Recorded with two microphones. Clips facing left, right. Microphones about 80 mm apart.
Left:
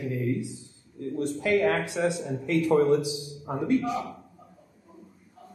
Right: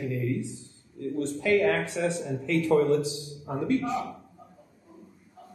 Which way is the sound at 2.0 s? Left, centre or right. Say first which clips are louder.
Left 2 dB; left.